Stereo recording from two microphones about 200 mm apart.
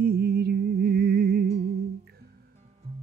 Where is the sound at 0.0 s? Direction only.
50° right (ahead or behind).